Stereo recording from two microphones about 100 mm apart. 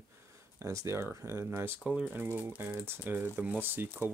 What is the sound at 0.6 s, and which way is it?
Speech, 25° right (ahead or behind).